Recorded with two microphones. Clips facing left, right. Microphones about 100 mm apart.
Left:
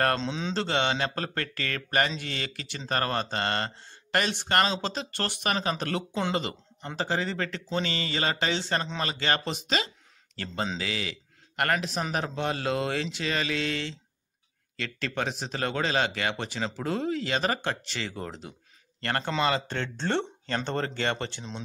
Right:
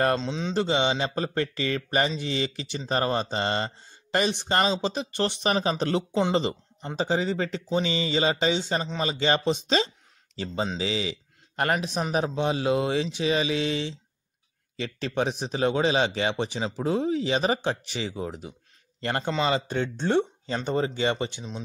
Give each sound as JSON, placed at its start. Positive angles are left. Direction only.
{"t": 0.0, "sound": "speech", "side_deg": -5}
{"t": 0.6, "sound": "speech", "side_deg": -15}
{"t": 8.8, "sound": "speech", "side_deg": -5}
{"t": 9.1, "sound": "speech", "side_deg": -15}
{"t": 10.3, "sound": "speech", "side_deg": -10}